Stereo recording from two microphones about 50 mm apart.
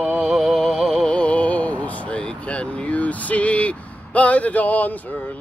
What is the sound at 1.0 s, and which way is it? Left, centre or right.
Speech, left.